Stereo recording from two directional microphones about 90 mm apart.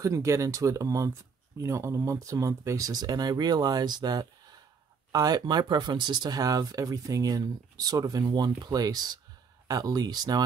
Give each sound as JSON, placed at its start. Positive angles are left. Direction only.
{"t": 0.0, "sound": "speech", "side_deg": -35}